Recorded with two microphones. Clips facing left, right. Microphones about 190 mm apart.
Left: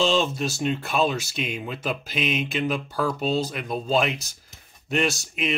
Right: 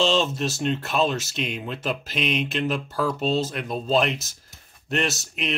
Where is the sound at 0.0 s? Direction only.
Centre (ahead or behind).